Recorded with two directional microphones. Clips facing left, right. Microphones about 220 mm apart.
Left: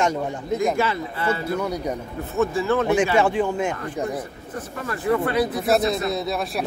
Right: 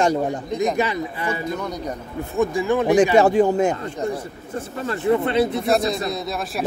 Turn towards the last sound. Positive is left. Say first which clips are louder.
# left 2 dB
turn(degrees=0)  # may be behind; listen again after turning